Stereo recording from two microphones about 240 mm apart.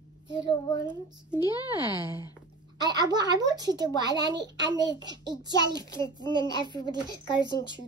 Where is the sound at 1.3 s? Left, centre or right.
Centre.